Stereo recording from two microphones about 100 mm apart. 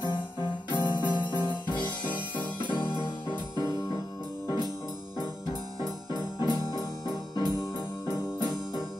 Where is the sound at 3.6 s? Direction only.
35° left (ahead or behind).